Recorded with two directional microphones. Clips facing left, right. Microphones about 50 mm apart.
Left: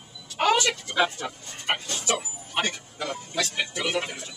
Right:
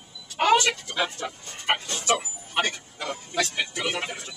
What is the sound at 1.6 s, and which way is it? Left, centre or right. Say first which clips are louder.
Music: right 2 dB; centre.